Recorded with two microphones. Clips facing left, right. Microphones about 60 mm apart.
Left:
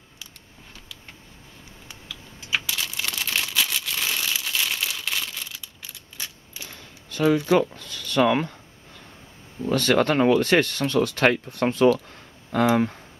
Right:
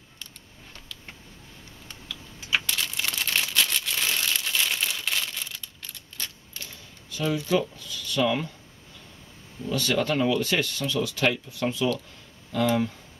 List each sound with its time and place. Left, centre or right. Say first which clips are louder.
1.9 s crumpling: right 1 dB; centre
6.7 s a sound: left 2 dB; left
7.3 s speech: left 5 dB; left
9.7 s speech: left 5 dB; left